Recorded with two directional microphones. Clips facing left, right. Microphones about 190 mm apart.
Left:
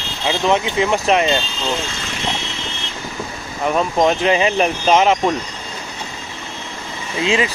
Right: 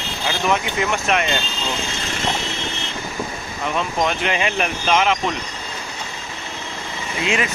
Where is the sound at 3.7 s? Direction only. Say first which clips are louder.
Left 6 dB; 35° left (ahead or behind).